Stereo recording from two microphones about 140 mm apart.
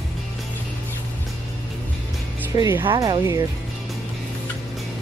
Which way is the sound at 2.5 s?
25° right (ahead or behind).